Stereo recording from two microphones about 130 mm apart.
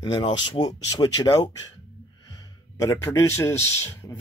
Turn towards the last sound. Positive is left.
turn(degrees=20)  # may be behind; listen again after turning